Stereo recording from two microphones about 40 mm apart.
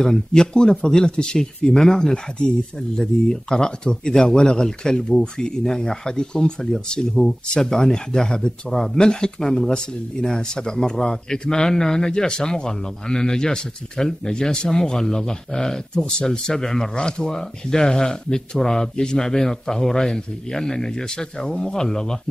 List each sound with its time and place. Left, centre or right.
0.0 s speech: centre